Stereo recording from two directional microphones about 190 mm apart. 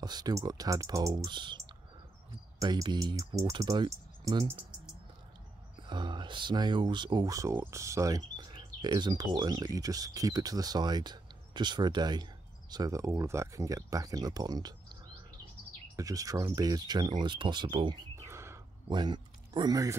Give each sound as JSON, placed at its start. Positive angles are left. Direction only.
{"t": 0.0, "sound": "speech", "side_deg": -20}
{"t": 2.6, "sound": "speech", "side_deg": -20}
{"t": 5.9, "sound": "speech", "side_deg": -25}
{"t": 16.0, "sound": "speech", "side_deg": -20}
{"t": 18.1, "sound": "a sound", "side_deg": -15}